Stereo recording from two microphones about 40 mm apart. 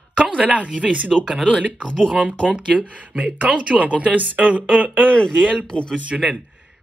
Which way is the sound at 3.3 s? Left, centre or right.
Right.